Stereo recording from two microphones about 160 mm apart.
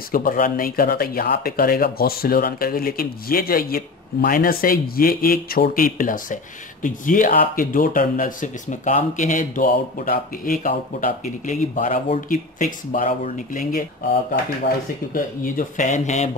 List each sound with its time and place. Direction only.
0.1 s speech: 60° left (ahead or behind)
15.1 s speech: 60° left (ahead or behind)